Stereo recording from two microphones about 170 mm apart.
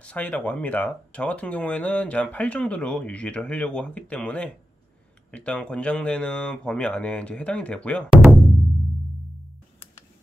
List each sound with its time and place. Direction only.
0.0 s speech: 10° left (ahead or behind)